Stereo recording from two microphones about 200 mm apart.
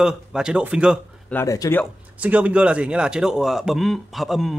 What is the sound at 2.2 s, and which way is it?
Speech, 5° right (ahead or behind).